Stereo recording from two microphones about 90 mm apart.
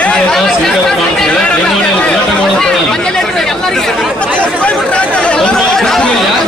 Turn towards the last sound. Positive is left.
turn(degrees=5)  # may be behind; listen again after turning